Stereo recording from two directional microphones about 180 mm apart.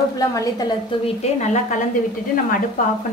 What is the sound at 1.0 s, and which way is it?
Speech, 40° left (ahead or behind).